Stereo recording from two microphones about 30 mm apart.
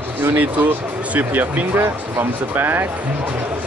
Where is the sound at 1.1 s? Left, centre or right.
Right.